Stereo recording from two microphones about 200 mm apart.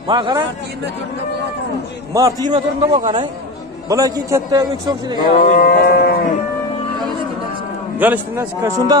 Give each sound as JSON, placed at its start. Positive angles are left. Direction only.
{"t": 0.1, "sound": "a man's voice", "side_deg": -25}
{"t": 2.1, "sound": "a man's voice", "side_deg": -20}
{"t": 5.4, "sound": "moo", "side_deg": 45}
{"t": 8.0, "sound": "a man's voice", "side_deg": -10}